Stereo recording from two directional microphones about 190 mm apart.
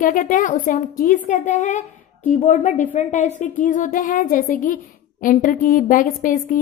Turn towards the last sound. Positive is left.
turn(degrees=45)  # may be behind; listen again after turning